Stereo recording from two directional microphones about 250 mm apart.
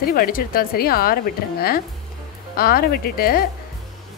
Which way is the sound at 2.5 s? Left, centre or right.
Left.